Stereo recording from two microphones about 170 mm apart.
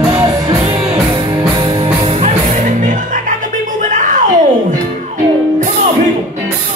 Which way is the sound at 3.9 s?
50° right (ahead or behind).